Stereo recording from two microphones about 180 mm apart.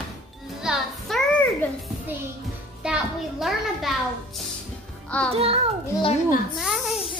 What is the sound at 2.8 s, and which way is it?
A woman's voice, 5° right (ahead or behind).